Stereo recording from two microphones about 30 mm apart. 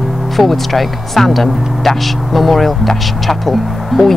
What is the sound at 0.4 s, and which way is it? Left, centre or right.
Speech, centre.